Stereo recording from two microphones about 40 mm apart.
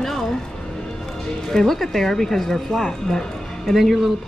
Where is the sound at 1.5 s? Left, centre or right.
Centre.